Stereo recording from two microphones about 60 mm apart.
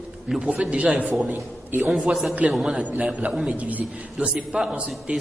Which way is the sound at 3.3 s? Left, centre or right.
Centre.